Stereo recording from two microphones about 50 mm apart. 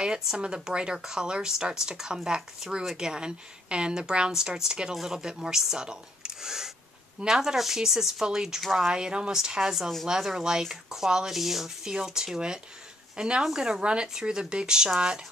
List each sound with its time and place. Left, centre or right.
0.0 s speech: centre